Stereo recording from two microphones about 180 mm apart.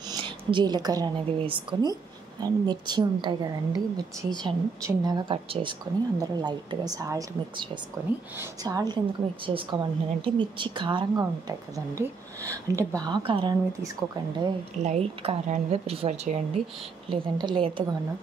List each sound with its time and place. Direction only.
0.1 s a woman's voice: 25° right (ahead or behind)
14.8 s speech: 35° right (ahead or behind)
17.1 s a woman's voice: 25° right (ahead or behind)